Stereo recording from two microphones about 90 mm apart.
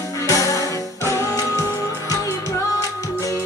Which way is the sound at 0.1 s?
35° left (ahead or behind).